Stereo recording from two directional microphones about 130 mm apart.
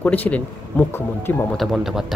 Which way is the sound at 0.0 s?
10° left (ahead or behind).